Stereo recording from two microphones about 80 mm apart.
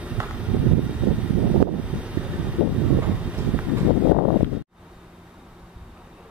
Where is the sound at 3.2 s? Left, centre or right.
Centre.